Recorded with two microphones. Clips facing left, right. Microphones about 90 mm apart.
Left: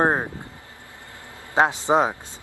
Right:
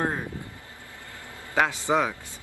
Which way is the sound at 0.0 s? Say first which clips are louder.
Left 8 dB; 45° left (ahead or behind).